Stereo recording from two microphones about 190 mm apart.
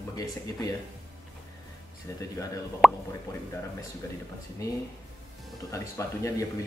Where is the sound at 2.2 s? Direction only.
15° left (ahead or behind).